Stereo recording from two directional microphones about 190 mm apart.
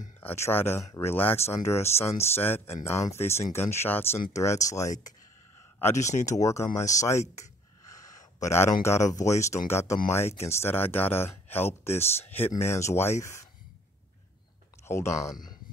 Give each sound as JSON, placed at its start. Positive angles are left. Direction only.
{"t": 0.2, "sound": "speech", "side_deg": 10}
{"t": 5.9, "sound": "speech", "side_deg": 40}
{"t": 6.2, "sound": "speech", "side_deg": 15}
{"t": 7.9, "sound": "a sound", "side_deg": 15}
{"t": 8.8, "sound": "speech", "side_deg": 15}
{"t": 14.9, "sound": "speech", "side_deg": 15}